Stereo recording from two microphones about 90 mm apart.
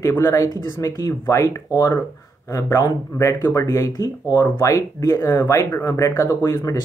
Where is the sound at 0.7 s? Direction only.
35° left (ahead or behind).